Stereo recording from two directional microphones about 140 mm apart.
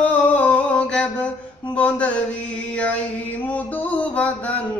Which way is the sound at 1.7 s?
10° left (ahead or behind).